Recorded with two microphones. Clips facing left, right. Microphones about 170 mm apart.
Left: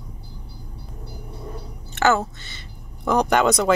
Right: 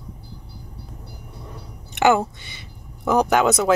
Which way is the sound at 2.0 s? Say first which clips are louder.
Right 2 dB; 15° right (ahead or behind).